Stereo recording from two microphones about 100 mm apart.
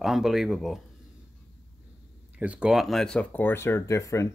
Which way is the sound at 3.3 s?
20° left (ahead or behind).